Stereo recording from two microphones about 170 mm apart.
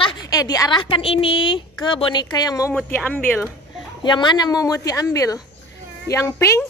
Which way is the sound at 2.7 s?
10° left (ahead or behind).